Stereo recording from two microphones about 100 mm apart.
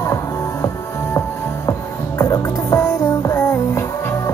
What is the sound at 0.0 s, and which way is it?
Music, 30° left (ahead or behind).